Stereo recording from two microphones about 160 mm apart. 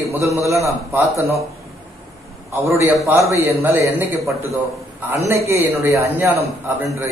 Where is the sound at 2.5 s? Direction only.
15° right (ahead or behind).